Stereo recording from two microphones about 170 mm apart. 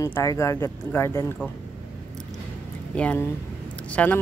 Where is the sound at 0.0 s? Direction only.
20° left (ahead or behind).